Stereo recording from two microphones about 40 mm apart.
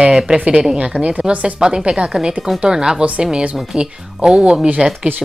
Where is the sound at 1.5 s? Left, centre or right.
Right.